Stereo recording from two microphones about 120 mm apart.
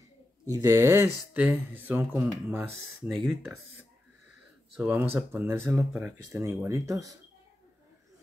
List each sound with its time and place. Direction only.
0.5 s speech: 25° right (ahead or behind)
3.0 s speech: centre (ahead or behind)
4.7 s speech: 15° right (ahead or behind)